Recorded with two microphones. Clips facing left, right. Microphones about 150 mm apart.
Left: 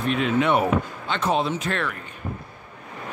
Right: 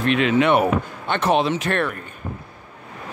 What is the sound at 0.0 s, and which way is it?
Speech, 90° right.